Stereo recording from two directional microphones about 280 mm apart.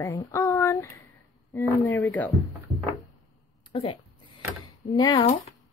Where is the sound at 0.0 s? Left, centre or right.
Centre.